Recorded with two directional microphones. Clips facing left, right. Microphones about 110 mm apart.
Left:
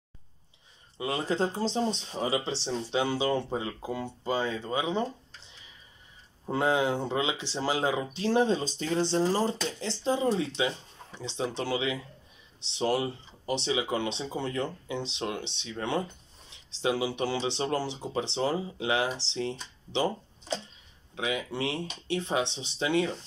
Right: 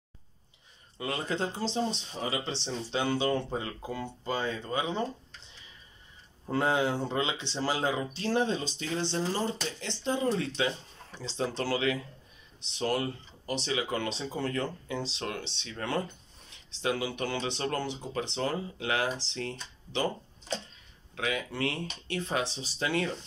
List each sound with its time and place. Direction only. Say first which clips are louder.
0.9 s speech: left 3 dB; 20° left (ahead or behind)
1.2 s speech: left 4 dB; 35° left (ahead or behind)
2.1 s speech: left 5 dB; 25° left (ahead or behind)
2.5 s speech: left 3 dB; 10° left (ahead or behind)
6.4 s speech: left 1 dB; 15° left (ahead or behind)
8.5 s speech: left 4 dB; 35° left (ahead or behind); by 11.7 s 15° left (ahead or behind)
12.7 s speech: left 2 dB; 20° left (ahead or behind)
21.1 s speech: left 1 dB; 20° left (ahead or behind)